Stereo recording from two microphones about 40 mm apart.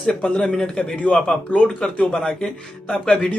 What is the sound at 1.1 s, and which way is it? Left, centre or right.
Speech, left.